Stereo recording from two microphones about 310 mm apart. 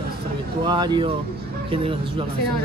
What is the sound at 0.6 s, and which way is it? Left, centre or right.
Speech, centre.